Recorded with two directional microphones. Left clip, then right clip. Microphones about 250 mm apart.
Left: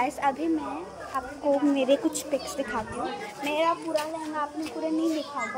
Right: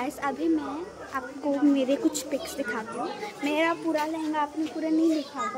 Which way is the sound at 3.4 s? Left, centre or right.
Right.